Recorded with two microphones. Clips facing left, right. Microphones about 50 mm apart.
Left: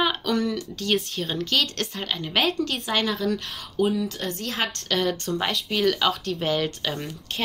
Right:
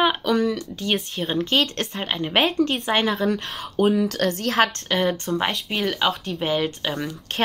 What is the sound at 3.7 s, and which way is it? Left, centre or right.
Speech, right.